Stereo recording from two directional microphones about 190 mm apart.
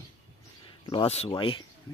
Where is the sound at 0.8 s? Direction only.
30° left (ahead or behind).